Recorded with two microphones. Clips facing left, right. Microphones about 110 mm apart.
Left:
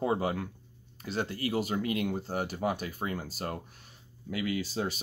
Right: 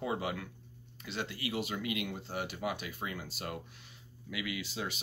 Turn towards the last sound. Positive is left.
turn(degrees=40)  # may be behind; listen again after turning